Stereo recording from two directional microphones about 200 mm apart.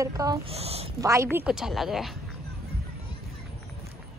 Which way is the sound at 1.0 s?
15° right (ahead or behind).